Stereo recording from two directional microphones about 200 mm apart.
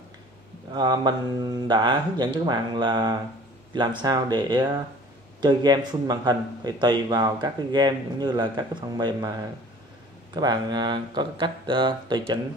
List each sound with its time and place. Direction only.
0.7 s speech: 20° right (ahead or behind)